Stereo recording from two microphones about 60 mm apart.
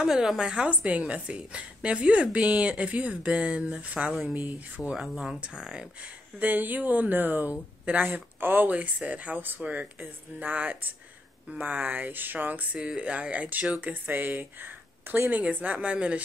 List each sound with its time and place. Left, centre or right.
0.0 s a woman's voice: centre
4.9 s speech: centre
6.4 s a woman's voice: right
12.7 s a woman's voice: centre